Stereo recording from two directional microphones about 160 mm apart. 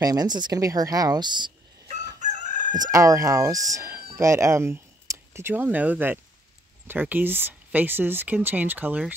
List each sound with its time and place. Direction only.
0.0 s speech: 25° right (ahead or behind)
2.2 s crowing: 50° right (ahead or behind)
2.9 s speech: 20° right (ahead or behind)